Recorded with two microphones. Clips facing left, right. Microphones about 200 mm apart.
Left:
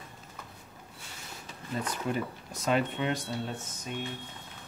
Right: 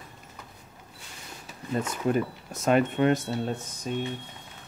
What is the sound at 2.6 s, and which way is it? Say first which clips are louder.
Speech: right 6 dB; 50° right (ahead or behind).